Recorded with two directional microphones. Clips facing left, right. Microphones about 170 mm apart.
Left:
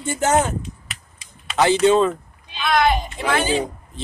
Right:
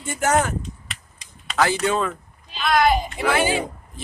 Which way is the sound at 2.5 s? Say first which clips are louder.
Even; centre (ahead or behind).